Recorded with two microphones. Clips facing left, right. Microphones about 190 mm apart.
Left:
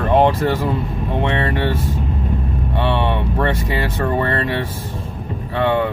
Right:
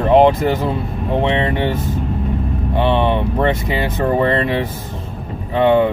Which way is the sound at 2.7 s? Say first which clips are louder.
Right 4 dB; 15° right (ahead or behind).